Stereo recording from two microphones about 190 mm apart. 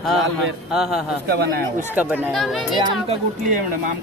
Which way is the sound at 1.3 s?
60° right (ahead or behind).